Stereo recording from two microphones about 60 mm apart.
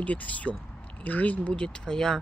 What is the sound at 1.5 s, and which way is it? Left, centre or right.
Speech, centre.